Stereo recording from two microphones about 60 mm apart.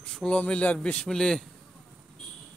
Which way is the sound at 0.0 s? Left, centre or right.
Centre.